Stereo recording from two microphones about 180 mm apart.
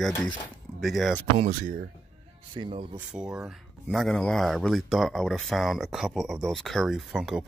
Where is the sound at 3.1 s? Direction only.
5° right (ahead or behind).